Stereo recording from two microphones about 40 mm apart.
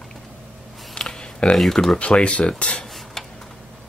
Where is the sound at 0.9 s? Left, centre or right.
Left.